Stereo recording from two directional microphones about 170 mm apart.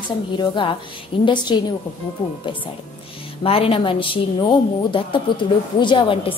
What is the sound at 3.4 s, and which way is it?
Speech, 35° left (ahead or behind).